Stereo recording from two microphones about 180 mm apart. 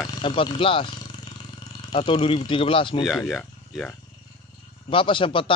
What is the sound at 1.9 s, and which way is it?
A man's voice, 30° left (ahead or behind).